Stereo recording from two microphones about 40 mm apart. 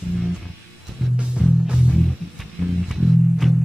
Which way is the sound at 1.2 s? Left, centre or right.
Right.